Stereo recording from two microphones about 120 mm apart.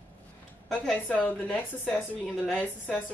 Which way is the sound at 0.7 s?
5° left (ahead or behind).